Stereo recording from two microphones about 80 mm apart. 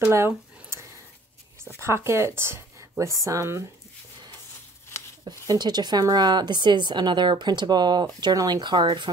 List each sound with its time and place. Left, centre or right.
1.8 s speech: right
5.2 s a woman's voice: right